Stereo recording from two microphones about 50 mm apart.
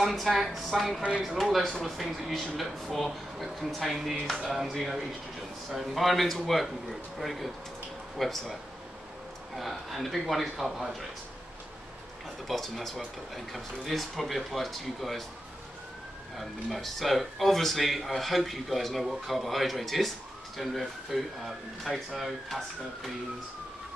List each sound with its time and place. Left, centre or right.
0.0 s speech: centre
9.6 s speech: centre
12.4 s speech: centre
16.7 s speech: centre